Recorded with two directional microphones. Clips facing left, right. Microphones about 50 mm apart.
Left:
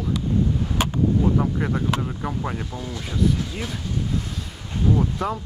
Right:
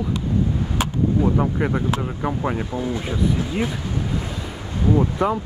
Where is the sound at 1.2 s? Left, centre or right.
Centre.